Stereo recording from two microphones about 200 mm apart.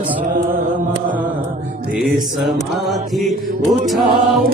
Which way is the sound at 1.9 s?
Centre (ahead or behind).